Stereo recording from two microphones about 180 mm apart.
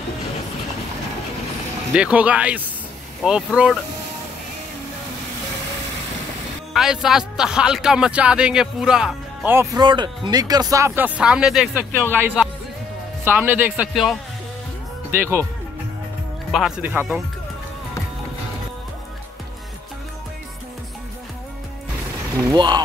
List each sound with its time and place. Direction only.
2.0 s a man's voice: 5° right (ahead or behind)
6.7 s a man's voice: 5° right (ahead or behind)
9.8 s speech: 25° right (ahead or behind)
11.1 s a man's voice: 5° right (ahead or behind)
15.0 s speech: 15° right (ahead or behind)
16.5 s a man's voice: 5° right (ahead or behind)
22.3 s a man's voice: 15° right (ahead or behind)